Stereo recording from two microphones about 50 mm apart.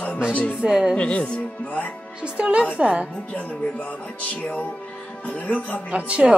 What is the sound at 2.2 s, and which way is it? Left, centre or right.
Speech, right.